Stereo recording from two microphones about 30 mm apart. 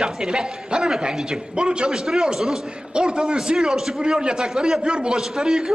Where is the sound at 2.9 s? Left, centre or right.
Right; by 4.8 s centre.